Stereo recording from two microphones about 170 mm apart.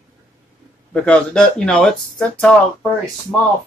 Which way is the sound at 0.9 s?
5° left (ahead or behind).